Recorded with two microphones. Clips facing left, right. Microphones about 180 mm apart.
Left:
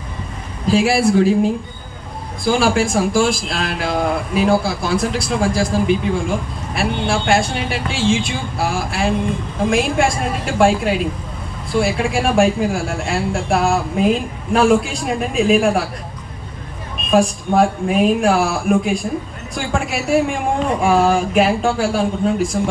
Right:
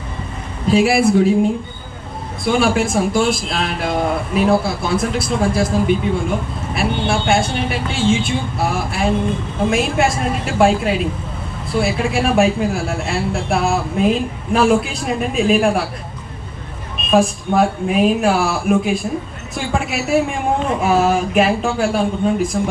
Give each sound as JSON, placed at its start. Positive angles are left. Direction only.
{"t": 0.7, "sound": "speech", "side_deg": 0}
{"t": 2.5, "sound": "speech", "side_deg": 0}
{"t": 17.1, "sound": "speech", "side_deg": 0}